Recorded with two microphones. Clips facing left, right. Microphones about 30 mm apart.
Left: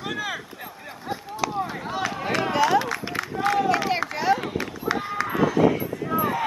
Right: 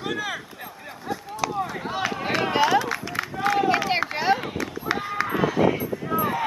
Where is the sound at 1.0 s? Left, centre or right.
Left.